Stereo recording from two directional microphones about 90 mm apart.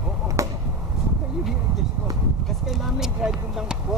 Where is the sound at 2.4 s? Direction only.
5° right (ahead or behind).